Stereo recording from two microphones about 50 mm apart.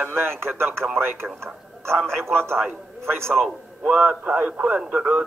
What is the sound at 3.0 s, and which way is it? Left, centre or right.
Speech, right.